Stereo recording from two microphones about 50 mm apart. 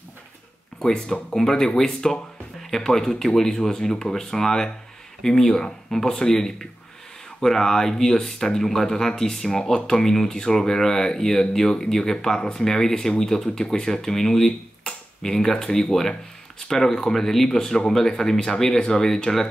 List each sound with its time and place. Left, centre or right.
0.9 s speech: left
1.3 s speech: centre